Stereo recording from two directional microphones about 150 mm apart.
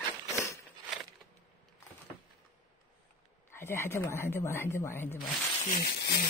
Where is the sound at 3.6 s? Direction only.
15° left (ahead or behind).